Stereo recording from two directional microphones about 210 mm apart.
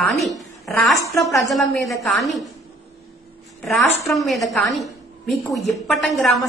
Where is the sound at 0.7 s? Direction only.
Centre (ahead or behind).